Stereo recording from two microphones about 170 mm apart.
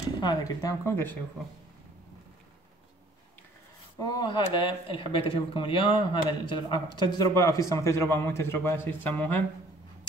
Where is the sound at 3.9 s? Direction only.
25° left (ahead or behind).